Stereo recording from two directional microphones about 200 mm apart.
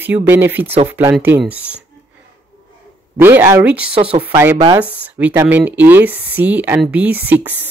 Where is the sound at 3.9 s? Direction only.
30° right (ahead or behind).